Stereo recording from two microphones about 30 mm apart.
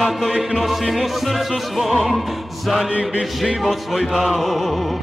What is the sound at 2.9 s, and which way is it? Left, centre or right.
Chant, right.